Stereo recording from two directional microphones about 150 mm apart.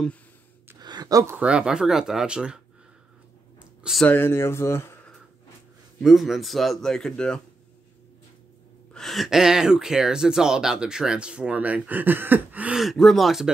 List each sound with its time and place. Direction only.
0.7 s speech: 25° right (ahead or behind); by 2.6 s 5° right (ahead or behind)
3.8 s speech: centre (ahead or behind)
4.1 s speech: 15° left (ahead or behind)
5.9 s speech: centre (ahead or behind)
8.9 s speech: centre (ahead or behind)